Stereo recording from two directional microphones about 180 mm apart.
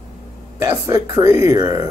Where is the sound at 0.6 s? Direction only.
15° right (ahead or behind).